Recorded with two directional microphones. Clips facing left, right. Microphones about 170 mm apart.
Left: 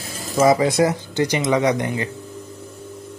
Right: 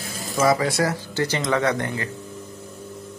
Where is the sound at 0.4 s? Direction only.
20° left (ahead or behind).